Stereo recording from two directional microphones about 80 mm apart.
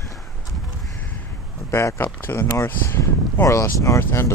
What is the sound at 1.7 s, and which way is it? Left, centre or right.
Speech, left.